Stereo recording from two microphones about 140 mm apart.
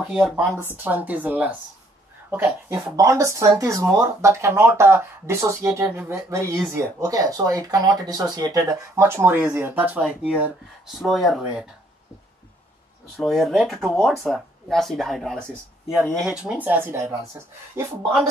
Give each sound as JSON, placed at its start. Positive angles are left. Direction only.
{"t": 0.0, "sound": "speech", "side_deg": -5}
{"t": 13.2, "sound": "speech", "side_deg": 0}